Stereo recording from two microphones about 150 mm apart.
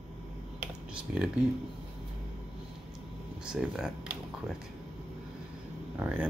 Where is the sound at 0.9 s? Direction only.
5° right (ahead or behind).